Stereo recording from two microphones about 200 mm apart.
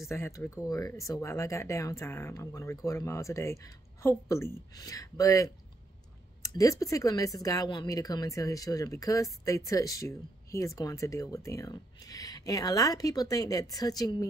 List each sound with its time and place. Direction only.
0.1 s speech: 10° left (ahead or behind)